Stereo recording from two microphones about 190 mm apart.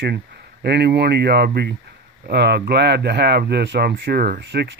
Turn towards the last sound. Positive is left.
turn(degrees=-60)  # may be behind; listen again after turning